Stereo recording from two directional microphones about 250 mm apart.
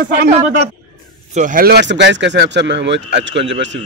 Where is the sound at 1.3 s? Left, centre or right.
Right.